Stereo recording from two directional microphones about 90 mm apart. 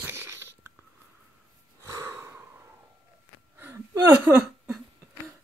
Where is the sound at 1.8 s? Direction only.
30° right (ahead or behind).